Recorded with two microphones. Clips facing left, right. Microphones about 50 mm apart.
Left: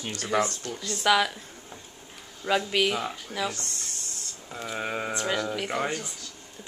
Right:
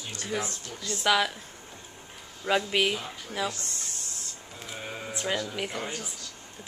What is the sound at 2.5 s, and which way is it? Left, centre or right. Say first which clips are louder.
A woman's voice: left 1 dB; centre.